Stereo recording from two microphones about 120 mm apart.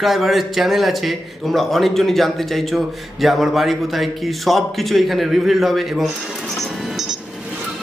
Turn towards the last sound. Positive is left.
turn(degrees=0)  # may be behind; listen again after turning